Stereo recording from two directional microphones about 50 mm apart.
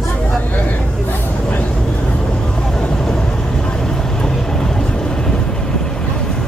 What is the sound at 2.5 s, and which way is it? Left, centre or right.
Vehicle, centre.